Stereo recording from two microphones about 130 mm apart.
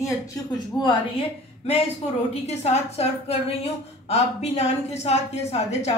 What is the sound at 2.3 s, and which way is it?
A woman's voice, 55° left (ahead or behind).